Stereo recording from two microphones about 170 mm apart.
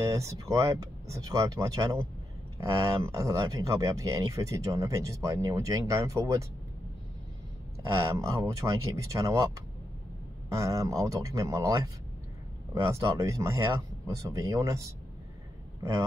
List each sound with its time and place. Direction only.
0.0 s speech: 20° right (ahead or behind)
8.1 s speech: 20° right (ahead or behind)
10.5 s speech: 20° right (ahead or behind)